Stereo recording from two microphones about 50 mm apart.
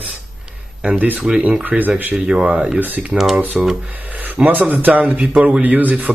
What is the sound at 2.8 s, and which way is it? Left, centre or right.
Speech, right.